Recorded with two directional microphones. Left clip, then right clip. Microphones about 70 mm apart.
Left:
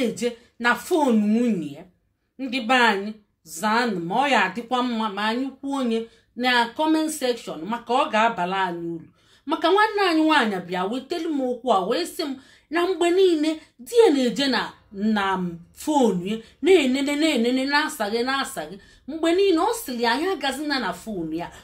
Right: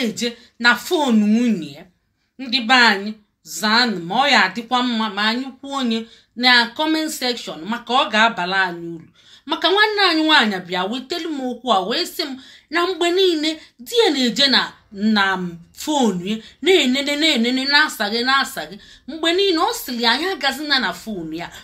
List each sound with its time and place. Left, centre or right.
0.0 s a woman's voice: left